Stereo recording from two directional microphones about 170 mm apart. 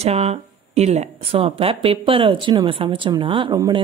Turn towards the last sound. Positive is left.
turn(degrees=-25)  # may be behind; listen again after turning